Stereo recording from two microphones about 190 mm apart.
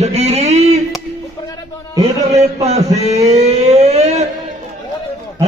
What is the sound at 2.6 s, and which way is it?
Speech, 35° right (ahead or behind).